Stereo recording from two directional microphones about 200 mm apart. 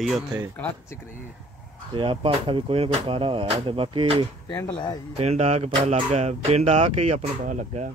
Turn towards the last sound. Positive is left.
turn(degrees=-35)  # may be behind; listen again after turning